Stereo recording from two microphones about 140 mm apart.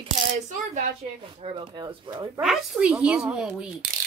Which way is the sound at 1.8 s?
25° right (ahead or behind).